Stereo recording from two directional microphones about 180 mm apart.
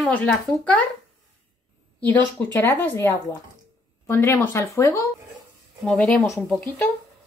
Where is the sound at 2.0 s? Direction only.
10° left (ahead or behind).